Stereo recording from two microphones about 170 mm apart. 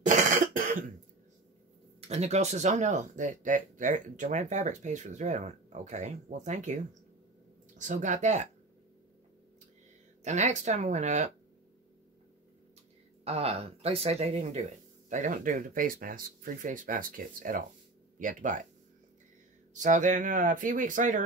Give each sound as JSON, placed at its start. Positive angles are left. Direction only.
{"t": 0.0, "sound": "cough", "side_deg": -45}
{"t": 2.0, "sound": "speech", "side_deg": -40}
{"t": 10.2, "sound": "speech", "side_deg": -45}
{"t": 13.2, "sound": "speech", "side_deg": -35}
{"t": 19.7, "sound": "speech", "side_deg": -45}